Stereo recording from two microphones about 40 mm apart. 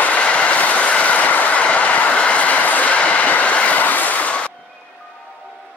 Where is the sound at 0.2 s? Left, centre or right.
Left.